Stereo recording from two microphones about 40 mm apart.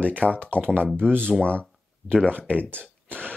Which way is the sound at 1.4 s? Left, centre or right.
Left.